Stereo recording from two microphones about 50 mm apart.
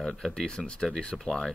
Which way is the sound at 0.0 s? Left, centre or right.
Centre.